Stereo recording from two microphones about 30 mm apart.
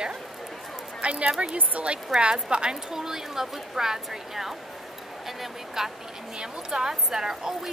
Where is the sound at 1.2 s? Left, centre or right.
Right.